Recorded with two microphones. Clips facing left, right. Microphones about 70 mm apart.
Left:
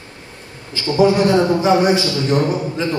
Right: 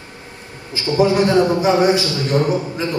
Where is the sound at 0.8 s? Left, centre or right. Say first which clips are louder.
Left 1 dB; right.